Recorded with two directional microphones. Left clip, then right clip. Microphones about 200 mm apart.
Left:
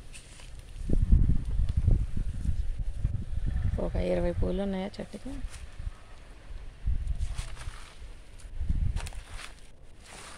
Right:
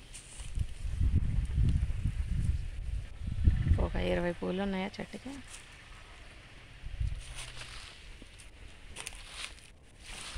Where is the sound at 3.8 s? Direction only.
Centre (ahead or behind).